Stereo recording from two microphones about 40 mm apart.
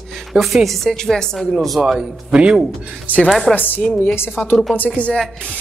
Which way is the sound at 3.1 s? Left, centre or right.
Left.